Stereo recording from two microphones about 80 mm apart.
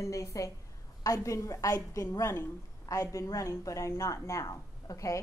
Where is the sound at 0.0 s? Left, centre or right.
Left.